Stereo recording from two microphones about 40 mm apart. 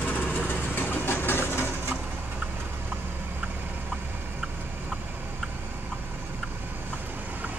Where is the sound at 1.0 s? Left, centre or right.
Left.